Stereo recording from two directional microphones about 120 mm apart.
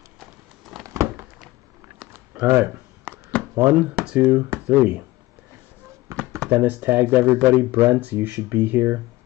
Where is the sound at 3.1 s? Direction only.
15° left (ahead or behind).